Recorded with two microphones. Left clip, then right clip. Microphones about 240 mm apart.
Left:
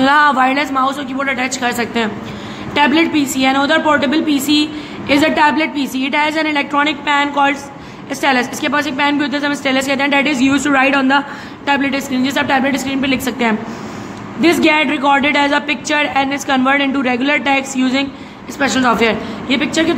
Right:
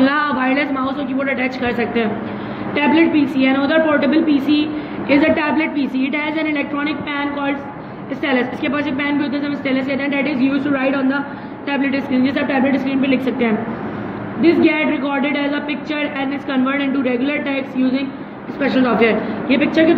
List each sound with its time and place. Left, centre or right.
0.0 s a woman's voice: left